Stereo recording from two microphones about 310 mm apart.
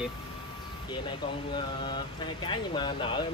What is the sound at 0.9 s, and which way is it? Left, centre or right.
Speech, centre.